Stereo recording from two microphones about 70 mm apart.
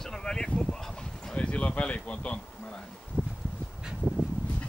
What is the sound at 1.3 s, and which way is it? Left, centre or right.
Insect, centre.